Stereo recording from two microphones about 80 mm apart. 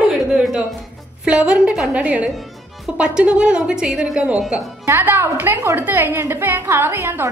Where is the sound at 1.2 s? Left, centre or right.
Centre.